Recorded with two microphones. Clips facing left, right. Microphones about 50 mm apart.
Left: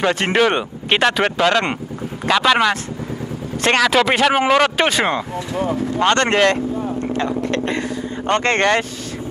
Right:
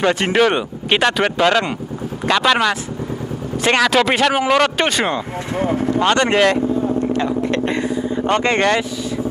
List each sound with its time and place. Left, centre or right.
0.0 s speech: centre
5.5 s speech: right
5.9 s speech: centre
7.4 s vehicle: right
8.2 s speech: centre